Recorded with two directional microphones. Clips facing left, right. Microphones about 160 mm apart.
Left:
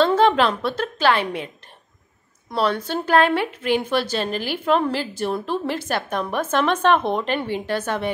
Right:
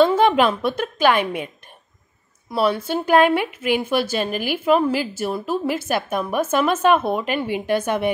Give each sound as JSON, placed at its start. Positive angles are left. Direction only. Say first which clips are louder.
{"t": 0.0, "sound": "a woman's voice", "louder": "right 1 dB", "side_deg": -10}
{"t": 2.5, "sound": "a woman's voice", "louder": "right 2 dB", "side_deg": -10}